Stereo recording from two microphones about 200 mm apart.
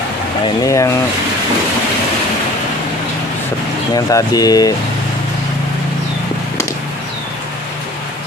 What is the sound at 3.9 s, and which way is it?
Speech, 20° left (ahead or behind).